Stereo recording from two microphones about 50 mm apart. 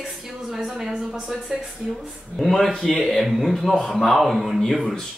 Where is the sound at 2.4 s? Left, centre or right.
Centre.